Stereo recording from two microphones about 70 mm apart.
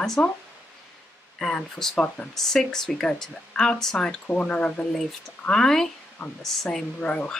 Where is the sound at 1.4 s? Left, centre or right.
Centre.